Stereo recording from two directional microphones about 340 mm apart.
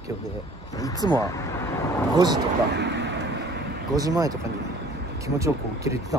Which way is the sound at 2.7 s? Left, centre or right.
Right.